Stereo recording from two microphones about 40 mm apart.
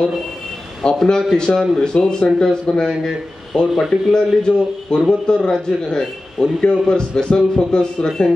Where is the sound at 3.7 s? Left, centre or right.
Centre.